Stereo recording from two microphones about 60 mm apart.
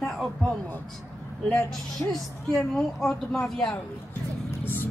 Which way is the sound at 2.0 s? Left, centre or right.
Left.